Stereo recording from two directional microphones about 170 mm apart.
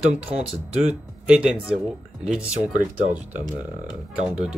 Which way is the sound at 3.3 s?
50° right (ahead or behind).